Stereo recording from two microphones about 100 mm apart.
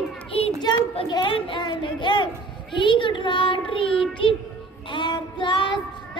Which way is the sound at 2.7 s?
55° left (ahead or behind).